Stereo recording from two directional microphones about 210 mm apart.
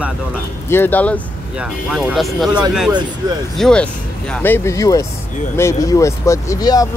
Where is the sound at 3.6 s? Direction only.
5° left (ahead or behind).